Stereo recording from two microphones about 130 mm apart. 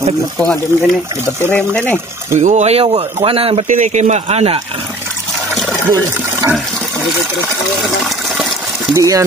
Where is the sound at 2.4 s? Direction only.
65° right (ahead or behind); by 3.7 s 45° right (ahead or behind).